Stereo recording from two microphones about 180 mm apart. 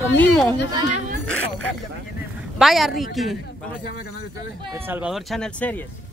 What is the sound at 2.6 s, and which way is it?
Speech, centre (ahead or behind).